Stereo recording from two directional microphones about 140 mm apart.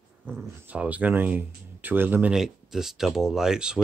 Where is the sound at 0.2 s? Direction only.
15° right (ahead or behind).